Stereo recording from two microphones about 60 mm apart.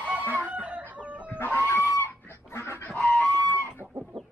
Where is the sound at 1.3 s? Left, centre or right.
Left.